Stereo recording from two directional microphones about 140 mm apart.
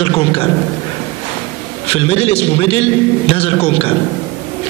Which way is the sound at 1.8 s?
45° left (ahead or behind).